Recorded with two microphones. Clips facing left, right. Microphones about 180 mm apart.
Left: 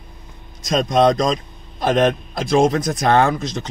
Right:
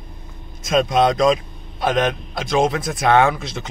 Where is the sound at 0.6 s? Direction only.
5° right (ahead or behind).